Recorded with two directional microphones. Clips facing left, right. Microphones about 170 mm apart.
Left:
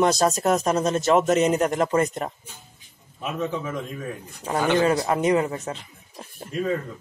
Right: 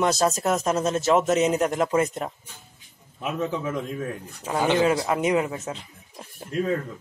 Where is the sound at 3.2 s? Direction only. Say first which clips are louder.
Even; 15° right (ahead or behind).